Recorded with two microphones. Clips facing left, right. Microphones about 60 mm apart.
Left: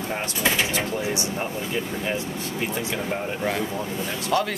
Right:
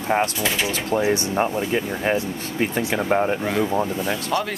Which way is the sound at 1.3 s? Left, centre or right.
Right.